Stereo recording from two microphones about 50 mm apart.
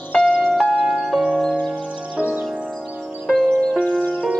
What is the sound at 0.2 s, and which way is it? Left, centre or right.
Music, centre.